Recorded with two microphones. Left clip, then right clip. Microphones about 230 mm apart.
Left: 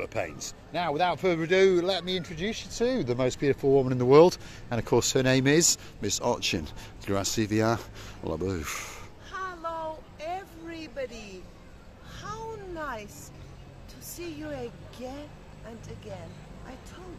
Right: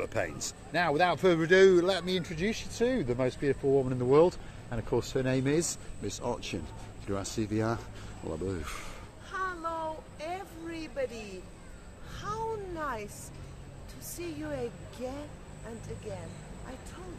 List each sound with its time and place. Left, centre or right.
0.0 s a man's voice: centre
2.7 s speech: left
9.3 s a sound: centre
14.1 s a woman's voice: centre